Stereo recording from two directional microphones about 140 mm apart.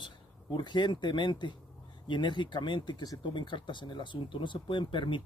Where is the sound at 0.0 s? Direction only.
35° left (ahead or behind).